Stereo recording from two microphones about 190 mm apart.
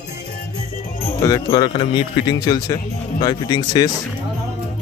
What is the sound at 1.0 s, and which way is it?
Speech, 15° left (ahead or behind).